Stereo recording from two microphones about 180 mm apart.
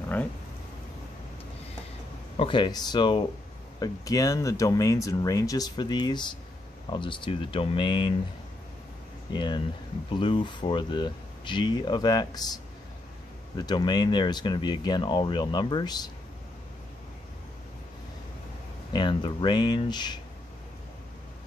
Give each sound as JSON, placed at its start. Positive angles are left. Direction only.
{"t": 2.3, "sound": "speech", "side_deg": 30}
{"t": 9.3, "sound": "speech", "side_deg": 25}
{"t": 13.6, "sound": "speech", "side_deg": 25}
{"t": 18.9, "sound": "speech", "side_deg": 25}